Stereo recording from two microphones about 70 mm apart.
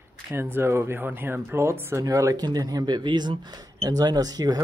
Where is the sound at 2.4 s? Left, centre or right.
Right.